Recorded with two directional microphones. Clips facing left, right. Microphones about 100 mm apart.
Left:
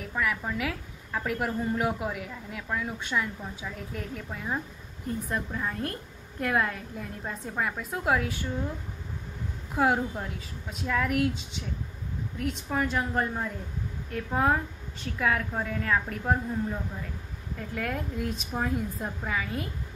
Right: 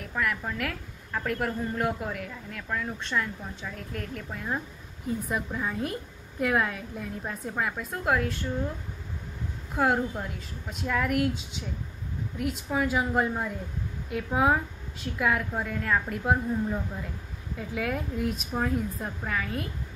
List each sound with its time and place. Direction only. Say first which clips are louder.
0.0 s a woman's voice: even; centre (ahead or behind)
9.8 s a woman's voice: even; centre (ahead or behind)
17.6 s a woman's voice: right 2 dB; 5° right (ahead or behind)